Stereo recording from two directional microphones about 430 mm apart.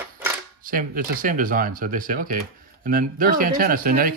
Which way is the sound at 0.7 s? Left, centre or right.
Centre.